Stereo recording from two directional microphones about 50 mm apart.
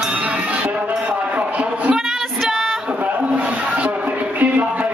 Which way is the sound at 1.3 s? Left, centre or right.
Right.